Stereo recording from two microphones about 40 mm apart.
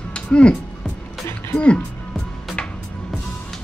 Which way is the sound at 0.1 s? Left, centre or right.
Left.